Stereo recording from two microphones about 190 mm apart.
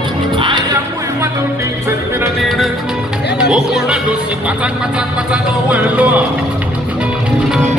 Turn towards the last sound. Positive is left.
turn(degrees=-5)  # may be behind; listen again after turning